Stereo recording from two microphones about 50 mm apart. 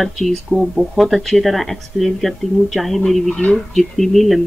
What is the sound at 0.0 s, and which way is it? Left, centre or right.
Speech, centre.